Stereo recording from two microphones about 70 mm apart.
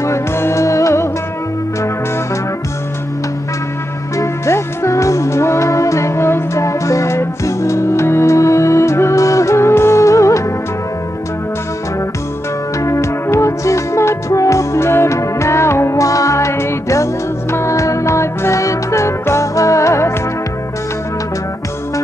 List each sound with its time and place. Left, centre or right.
0.0 s music: left
4.2 s music: left
12.8 s music: left